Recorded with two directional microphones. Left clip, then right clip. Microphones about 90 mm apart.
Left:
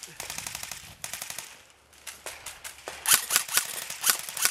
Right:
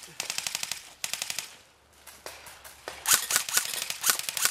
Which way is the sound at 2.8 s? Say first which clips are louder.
Left 1 dB; 5° left (ahead or behind).